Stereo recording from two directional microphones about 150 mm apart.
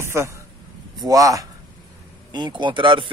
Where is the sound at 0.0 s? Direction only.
15° right (ahead or behind).